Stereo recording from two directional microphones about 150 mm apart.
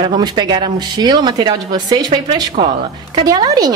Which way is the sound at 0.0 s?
30° right (ahead or behind).